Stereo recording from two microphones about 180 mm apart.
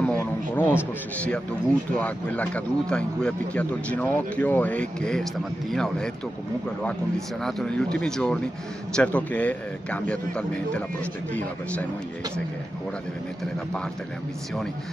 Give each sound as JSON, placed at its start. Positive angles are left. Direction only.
{"t": 0.0, "sound": "a sound", "side_deg": 10}
{"t": 1.2, "sound": "speech", "side_deg": 5}
{"t": 7.4, "sound": "speech", "side_deg": 5}